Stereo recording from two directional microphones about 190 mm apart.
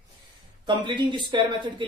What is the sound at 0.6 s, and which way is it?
Speech, 25° right (ahead or behind).